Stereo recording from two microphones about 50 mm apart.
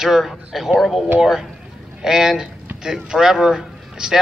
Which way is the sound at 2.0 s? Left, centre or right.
Centre.